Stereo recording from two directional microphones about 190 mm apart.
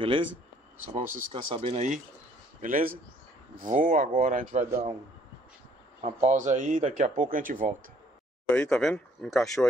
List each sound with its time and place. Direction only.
0.9 s speech: 30° right (ahead or behind)
2.6 s speech: 45° right (ahead or behind)
5.9 s speech: 35° right (ahead or behind)
8.5 s speech: 5° left (ahead or behind)